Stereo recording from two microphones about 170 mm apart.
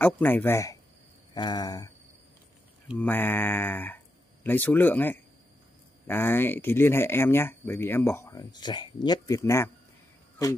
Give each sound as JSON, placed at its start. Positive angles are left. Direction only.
{"t": 0.0, "sound": "speech", "side_deg": 10}
{"t": 3.0, "sound": "speech", "side_deg": 10}